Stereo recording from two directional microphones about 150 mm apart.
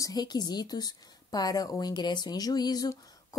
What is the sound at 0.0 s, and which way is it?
A woman's voice, 25° left (ahead or behind).